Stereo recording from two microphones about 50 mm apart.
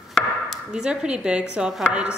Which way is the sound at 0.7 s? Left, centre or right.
Centre.